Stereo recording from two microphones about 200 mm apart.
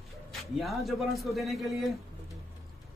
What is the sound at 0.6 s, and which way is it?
A man's voice, centre (ahead or behind).